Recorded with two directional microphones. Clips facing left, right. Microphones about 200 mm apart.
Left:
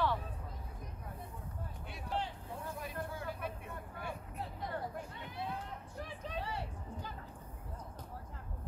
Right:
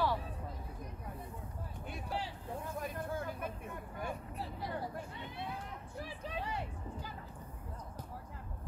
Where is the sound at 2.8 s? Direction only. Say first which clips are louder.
Right 3 dB; 50° right (ahead or behind).